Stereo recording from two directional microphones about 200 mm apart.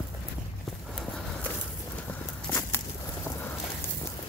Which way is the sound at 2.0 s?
10° left (ahead or behind).